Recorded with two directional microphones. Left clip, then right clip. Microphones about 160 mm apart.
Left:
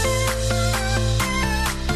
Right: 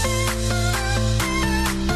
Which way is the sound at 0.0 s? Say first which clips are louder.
Left 2 dB; centre (ahead or behind).